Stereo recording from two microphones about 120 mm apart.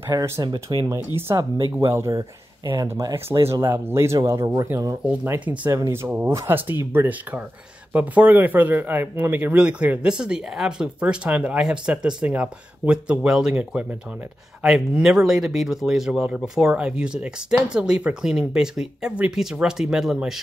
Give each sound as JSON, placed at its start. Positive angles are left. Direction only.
{"t": 0.1, "sound": "speech", "side_deg": -30}
{"t": 5.0, "sound": "speech", "side_deg": -10}
{"t": 5.7, "sound": "speech", "side_deg": -20}